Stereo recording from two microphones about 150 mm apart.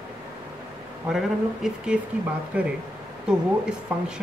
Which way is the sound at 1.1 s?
5° right (ahead or behind).